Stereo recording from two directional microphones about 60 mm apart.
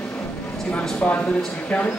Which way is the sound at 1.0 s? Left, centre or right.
Left.